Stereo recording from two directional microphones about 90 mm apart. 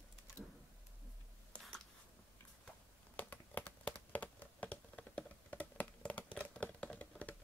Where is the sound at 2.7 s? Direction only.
20° left (ahead or behind).